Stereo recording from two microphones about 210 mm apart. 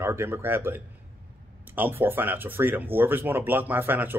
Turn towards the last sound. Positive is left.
turn(degrees=-10)  # may be behind; listen again after turning